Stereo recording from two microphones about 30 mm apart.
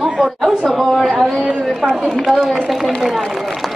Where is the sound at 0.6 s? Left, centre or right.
Centre.